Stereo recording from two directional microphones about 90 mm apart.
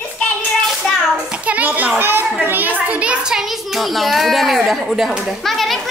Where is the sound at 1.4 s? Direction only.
15° right (ahead or behind).